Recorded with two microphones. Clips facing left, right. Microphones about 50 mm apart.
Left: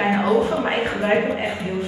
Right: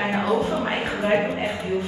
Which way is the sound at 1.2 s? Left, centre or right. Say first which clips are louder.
Left 2 dB; centre.